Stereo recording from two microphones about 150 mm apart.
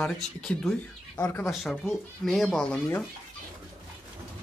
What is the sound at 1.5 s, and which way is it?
Speech, centre (ahead or behind).